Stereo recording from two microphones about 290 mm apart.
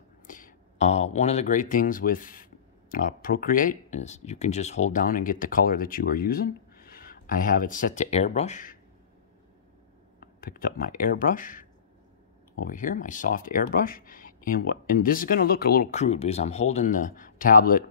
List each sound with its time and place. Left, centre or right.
0.3 s speech: left
10.2 s speech: left